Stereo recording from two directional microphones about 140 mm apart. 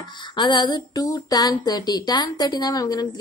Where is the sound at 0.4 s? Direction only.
35° left (ahead or behind).